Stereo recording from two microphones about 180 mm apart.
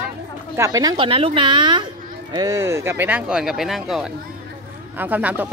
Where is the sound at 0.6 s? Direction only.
20° right (ahead or behind).